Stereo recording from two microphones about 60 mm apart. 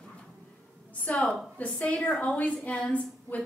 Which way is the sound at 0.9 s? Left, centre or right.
Left.